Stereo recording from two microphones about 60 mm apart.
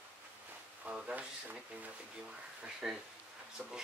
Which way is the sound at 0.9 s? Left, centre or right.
Centre.